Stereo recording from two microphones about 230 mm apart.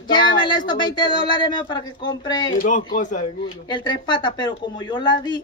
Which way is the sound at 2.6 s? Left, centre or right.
Left.